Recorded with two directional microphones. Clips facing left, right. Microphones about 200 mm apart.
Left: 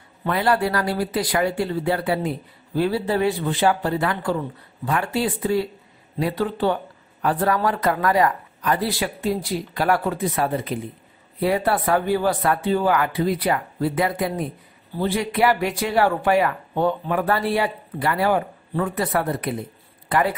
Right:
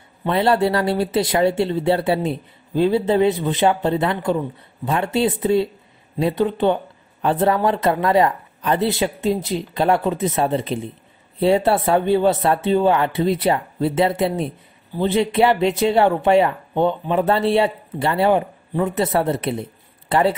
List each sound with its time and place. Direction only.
0.2 s speech: 25° right (ahead or behind)